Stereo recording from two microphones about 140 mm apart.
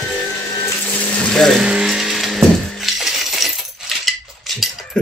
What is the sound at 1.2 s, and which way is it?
Speech, 5° left (ahead or behind).